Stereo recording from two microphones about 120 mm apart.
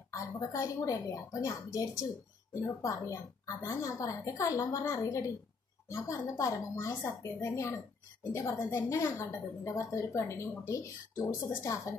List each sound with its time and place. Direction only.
0.1 s a woman's voice: 25° left (ahead or behind)